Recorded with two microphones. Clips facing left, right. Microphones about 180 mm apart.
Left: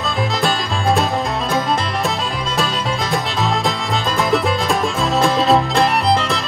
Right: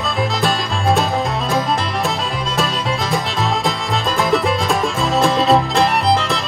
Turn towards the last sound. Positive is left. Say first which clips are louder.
# even
turn(degrees=0)  # may be behind; listen again after turning